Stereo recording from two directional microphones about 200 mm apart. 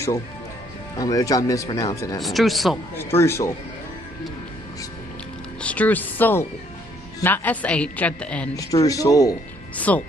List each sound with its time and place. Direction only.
0.9 s a woman's voice: 15° left (ahead or behind)
2.2 s speech: centre (ahead or behind)
3.0 s a woman's voice: 10° left (ahead or behind)
5.6 s a woman's voice: 5° left (ahead or behind)
8.5 s a woman's voice: 15° left (ahead or behind)